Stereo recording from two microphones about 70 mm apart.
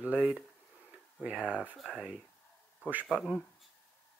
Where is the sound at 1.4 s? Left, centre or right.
Centre.